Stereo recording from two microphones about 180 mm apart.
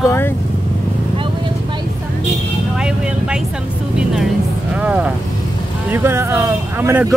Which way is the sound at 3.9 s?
5° right (ahead or behind).